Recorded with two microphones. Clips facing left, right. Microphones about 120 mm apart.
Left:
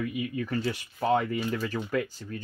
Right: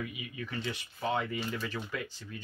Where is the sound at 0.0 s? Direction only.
50° left (ahead or behind).